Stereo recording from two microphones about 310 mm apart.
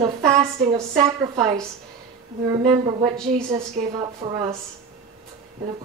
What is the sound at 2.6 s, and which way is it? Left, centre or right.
Speech, centre.